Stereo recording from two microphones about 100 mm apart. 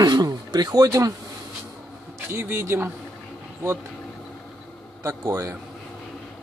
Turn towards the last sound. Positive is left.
turn(degrees=-30)  # may be behind; listen again after turning